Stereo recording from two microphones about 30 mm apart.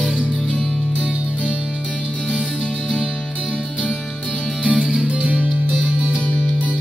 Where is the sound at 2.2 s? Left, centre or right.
Left.